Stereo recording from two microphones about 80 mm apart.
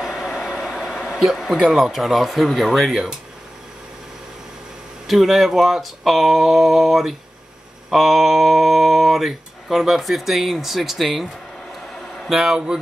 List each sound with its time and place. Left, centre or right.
0.0 s speech: centre
5.0 s speech: centre
11.7 s a sound: centre